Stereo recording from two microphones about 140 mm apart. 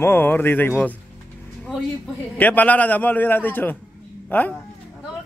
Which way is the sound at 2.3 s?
10° left (ahead or behind).